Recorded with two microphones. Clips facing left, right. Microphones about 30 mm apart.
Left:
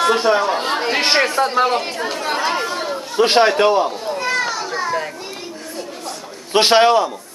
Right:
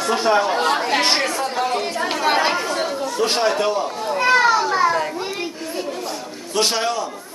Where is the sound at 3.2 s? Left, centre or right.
Left.